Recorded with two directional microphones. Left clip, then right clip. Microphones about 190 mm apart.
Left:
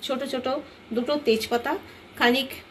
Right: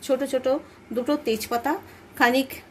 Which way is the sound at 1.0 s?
65° right (ahead or behind).